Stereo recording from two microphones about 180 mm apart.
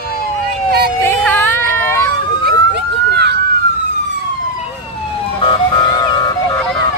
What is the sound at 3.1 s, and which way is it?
Police car, 70° right (ahead or behind).